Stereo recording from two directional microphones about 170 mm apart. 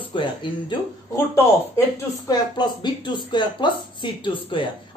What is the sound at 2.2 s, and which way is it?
Speech, 25° left (ahead or behind).